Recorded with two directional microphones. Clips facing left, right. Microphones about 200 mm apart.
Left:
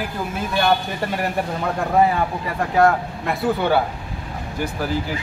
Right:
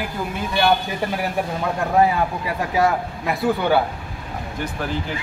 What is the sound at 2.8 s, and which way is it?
A man's voice, centre (ahead or behind).